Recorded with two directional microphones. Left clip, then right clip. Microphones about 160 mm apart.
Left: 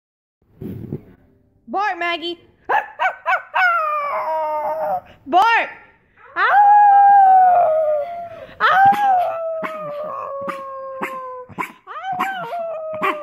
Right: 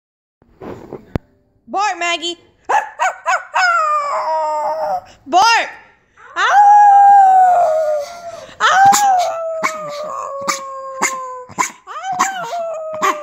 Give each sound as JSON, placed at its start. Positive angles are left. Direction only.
{"t": 1.7, "sound": "dog", "side_deg": -10}
{"t": 8.3, "sound": "wail", "side_deg": -5}
{"t": 9.0, "sound": "dog", "side_deg": -5}
{"t": 10.0, "sound": "howl", "side_deg": -5}
{"t": 10.6, "sound": "dog", "side_deg": -5}
{"t": 10.9, "sound": "dog", "side_deg": -25}
{"t": 11.1, "sound": "dog", "side_deg": -10}